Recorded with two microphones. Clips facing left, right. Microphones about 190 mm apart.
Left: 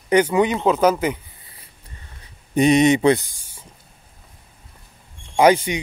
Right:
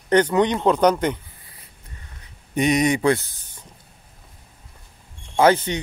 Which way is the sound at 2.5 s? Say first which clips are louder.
Left 5 dB; 30° left (ahead or behind).